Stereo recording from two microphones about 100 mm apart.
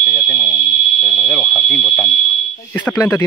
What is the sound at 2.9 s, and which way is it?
Speech, 25° left (ahead or behind).